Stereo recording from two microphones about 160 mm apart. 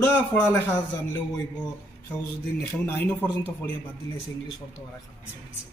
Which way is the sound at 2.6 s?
15° left (ahead or behind).